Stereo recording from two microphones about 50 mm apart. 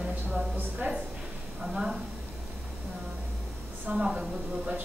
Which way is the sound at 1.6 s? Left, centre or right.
Centre.